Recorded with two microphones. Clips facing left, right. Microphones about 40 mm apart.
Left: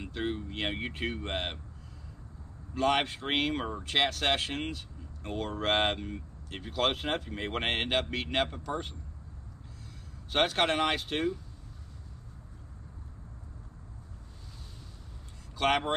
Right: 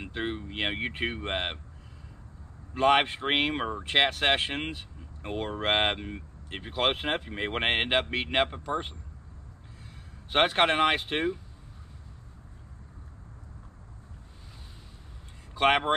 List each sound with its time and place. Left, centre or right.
0.0 s speech: right
2.7 s speech: right
10.3 s speech: right
15.5 s speech: right